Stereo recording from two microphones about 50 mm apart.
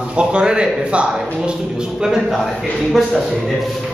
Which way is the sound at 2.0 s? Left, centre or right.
Centre.